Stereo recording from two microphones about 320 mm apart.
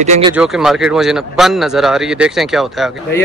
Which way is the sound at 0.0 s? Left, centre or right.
Right.